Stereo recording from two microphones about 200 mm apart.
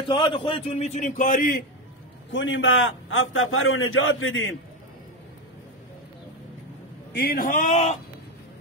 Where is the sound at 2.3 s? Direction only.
65° left (ahead or behind).